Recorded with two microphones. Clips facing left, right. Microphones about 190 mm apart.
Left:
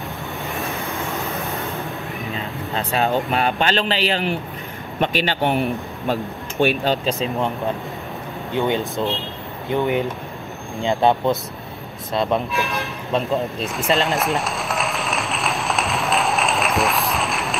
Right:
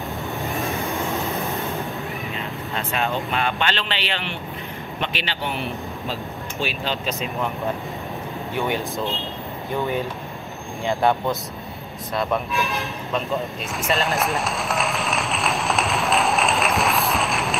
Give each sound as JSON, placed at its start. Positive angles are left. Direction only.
{"t": 0.4, "sound": "vehicle", "side_deg": 0}
{"t": 2.7, "sound": "a man's voice", "side_deg": 35}
{"t": 7.1, "sound": "speech", "side_deg": 30}
{"t": 8.5, "sound": "speech", "side_deg": 25}
{"t": 12.5, "sound": "speech", "side_deg": 0}
{"t": 13.9, "sound": "applause", "side_deg": 0}